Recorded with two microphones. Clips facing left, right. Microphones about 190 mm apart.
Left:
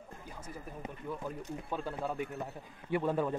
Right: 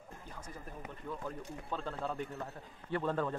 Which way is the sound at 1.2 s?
10° left (ahead or behind).